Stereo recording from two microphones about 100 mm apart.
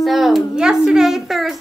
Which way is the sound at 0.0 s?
Centre (ahead or behind).